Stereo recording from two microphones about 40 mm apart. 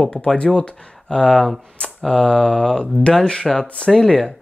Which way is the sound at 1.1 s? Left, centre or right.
Left.